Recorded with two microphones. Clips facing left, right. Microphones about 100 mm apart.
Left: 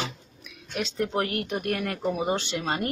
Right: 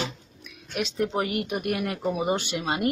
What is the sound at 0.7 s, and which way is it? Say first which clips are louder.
Speech: right 1 dB; 5° right (ahead or behind).